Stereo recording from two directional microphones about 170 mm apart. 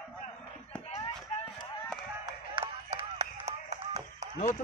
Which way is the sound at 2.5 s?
35° right (ahead or behind).